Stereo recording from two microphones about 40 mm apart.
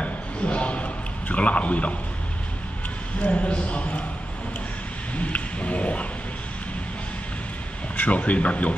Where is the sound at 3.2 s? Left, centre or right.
Left.